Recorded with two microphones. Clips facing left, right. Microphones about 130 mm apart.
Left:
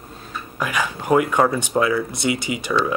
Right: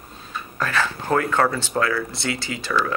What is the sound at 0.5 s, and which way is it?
Speech, 15° left (ahead or behind).